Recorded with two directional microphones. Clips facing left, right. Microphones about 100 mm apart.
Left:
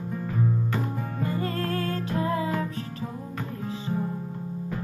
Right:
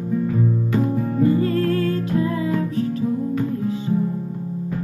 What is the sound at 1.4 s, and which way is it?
Music, 30° left (ahead or behind).